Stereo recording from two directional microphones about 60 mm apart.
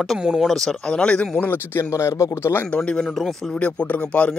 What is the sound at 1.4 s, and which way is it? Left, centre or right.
Speech, left.